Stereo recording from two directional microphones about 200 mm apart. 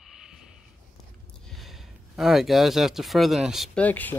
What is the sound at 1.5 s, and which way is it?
Speech, centre (ahead or behind).